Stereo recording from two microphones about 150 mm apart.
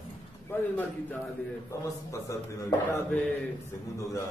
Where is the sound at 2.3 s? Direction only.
20° left (ahead or behind).